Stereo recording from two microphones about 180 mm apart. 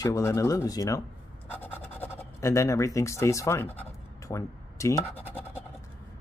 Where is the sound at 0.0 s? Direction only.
15° left (ahead or behind).